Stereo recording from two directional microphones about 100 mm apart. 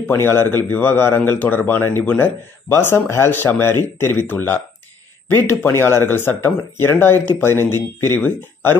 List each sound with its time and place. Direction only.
0.2 s a man's voice: 25° left (ahead or behind)